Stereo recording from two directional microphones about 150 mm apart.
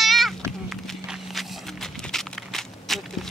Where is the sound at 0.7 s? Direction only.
Centre (ahead or behind).